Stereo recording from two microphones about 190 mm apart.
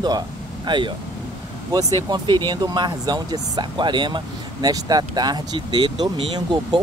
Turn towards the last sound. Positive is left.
turn(degrees=-25)  # may be behind; listen again after turning